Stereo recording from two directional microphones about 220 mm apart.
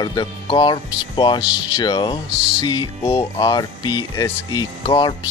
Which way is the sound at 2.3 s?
5° right (ahead or behind).